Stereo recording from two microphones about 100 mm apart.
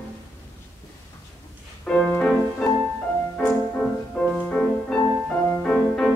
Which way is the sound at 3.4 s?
10° left (ahead or behind).